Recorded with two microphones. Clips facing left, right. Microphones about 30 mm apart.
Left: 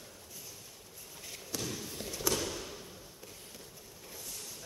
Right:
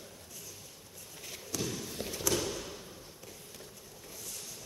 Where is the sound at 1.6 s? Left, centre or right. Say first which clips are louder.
Right 4 dB; centre.